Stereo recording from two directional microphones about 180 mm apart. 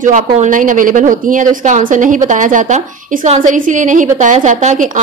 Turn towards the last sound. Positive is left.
turn(degrees=-40)  # may be behind; listen again after turning